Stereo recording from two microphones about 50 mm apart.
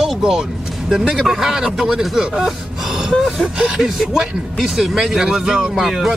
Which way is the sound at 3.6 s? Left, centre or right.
Centre.